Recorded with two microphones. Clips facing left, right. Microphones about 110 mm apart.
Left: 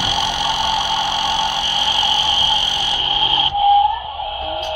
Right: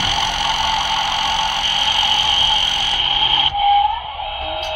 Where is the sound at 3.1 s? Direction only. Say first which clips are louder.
Left 1 dB; 50° right (ahead or behind).